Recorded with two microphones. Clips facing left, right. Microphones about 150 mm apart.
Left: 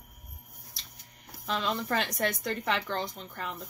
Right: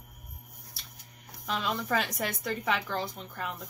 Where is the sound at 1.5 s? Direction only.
5° right (ahead or behind).